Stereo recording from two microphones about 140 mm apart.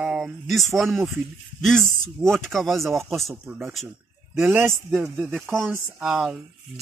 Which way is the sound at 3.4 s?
15° right (ahead or behind).